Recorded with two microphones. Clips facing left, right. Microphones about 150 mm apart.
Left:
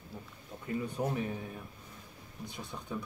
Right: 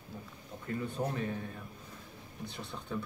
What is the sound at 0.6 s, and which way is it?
Speech, 15° left (ahead or behind).